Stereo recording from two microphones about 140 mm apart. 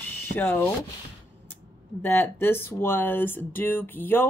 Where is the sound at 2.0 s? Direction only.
15° left (ahead or behind).